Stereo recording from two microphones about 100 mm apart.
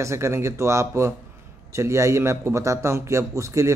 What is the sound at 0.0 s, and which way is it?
A man's voice, 30° right (ahead or behind).